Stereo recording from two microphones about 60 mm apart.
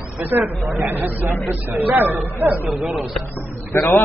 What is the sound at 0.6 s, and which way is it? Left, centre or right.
Speech, right.